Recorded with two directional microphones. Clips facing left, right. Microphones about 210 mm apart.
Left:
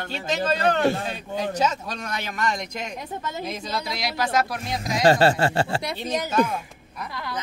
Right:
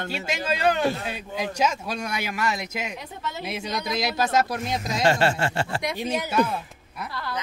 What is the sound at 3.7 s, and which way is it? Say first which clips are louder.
Speech: right 5 dB; 20° right (ahead or behind).